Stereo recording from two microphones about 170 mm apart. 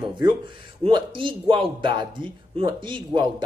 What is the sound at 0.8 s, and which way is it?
A man's voice, 30° right (ahead or behind).